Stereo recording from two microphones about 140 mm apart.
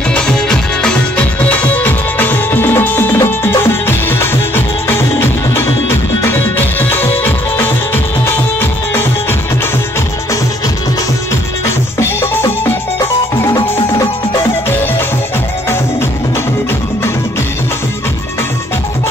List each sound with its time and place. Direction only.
0.1 s music: 5° left (ahead or behind)
12.0 s music: 15° left (ahead or behind)